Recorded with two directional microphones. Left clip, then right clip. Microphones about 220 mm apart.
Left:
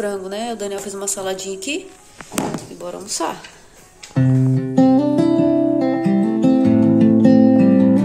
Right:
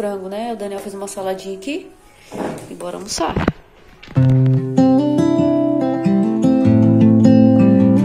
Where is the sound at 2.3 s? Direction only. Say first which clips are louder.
Left 1 dB; 5° right (ahead or behind).